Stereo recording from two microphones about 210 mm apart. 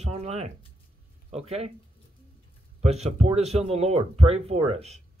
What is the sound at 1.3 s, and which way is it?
Speech, 30° right (ahead or behind).